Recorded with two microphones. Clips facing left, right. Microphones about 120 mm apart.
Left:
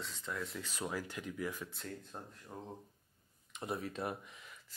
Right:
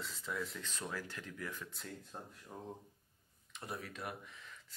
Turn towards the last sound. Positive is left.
turn(degrees=25)  # may be behind; listen again after turning